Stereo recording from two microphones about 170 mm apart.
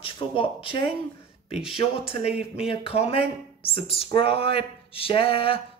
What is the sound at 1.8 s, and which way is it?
Speech, 35° left (ahead or behind).